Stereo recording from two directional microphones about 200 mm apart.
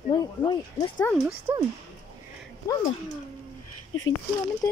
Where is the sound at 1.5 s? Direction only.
10° right (ahead or behind).